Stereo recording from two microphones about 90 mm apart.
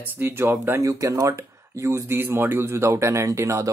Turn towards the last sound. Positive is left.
turn(degrees=-35)  # may be behind; listen again after turning